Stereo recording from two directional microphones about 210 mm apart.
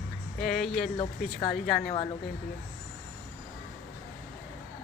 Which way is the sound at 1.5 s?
5° left (ahead or behind).